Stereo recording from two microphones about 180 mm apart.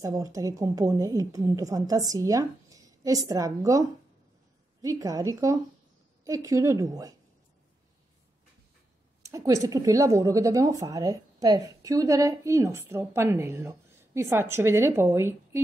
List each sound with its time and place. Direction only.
0.0 s a woman's voice: 20° right (ahead or behind)
4.8 s a woman's voice: 20° right (ahead or behind)
9.2 s speech: 20° right (ahead or behind)